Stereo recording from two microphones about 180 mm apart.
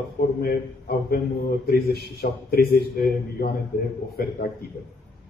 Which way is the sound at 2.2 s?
60° left (ahead or behind).